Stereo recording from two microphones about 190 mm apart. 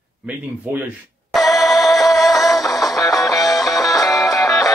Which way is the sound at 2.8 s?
20° left (ahead or behind).